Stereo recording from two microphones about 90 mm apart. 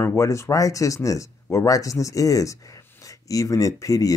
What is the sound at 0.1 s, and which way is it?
Speech, 35° left (ahead or behind).